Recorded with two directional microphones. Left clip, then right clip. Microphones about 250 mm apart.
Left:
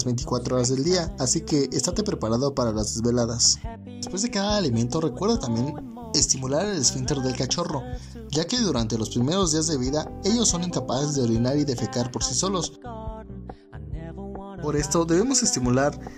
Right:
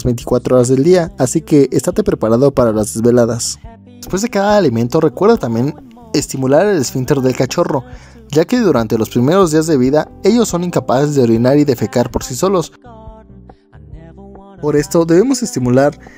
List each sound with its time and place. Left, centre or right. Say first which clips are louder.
0.4 s speech: right 14 dB; right
2.4 s speech: right 15 dB; right
2.8 s speech: right 13 dB; right
4.1 s speech: right 13 dB; right
14.6 s speech: right 11 dB; right